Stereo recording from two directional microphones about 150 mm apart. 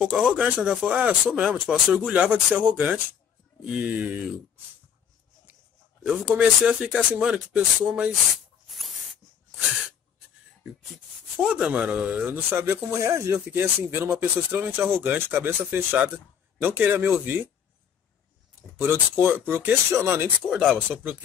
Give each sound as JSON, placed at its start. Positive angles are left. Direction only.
{"t": 0.0, "sound": "speech", "side_deg": -10}
{"t": 6.0, "sound": "speech", "side_deg": -5}
{"t": 8.6, "sound": "spray", "side_deg": 0}
{"t": 11.3, "sound": "speech", "side_deg": -5}
{"t": 18.8, "sound": "speech", "side_deg": -15}
{"t": 20.4, "sound": "speech", "side_deg": 0}
{"t": 20.7, "sound": "speech", "side_deg": -15}